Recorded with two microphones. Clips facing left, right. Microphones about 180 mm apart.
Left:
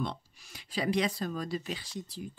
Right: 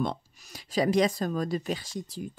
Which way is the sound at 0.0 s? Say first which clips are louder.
Right 5 dB; 45° right (ahead or behind).